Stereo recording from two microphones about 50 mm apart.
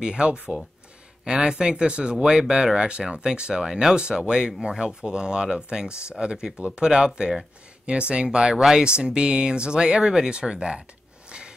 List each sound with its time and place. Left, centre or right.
0.0 s speech: centre
8.5 s speech: centre
8.8 s speech: centre
11.2 s a sound: centre